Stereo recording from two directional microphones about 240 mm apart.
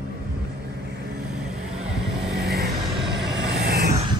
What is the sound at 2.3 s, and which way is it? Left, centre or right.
Vehicle, right.